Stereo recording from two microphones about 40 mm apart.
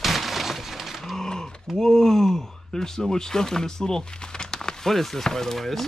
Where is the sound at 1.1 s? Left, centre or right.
Centre.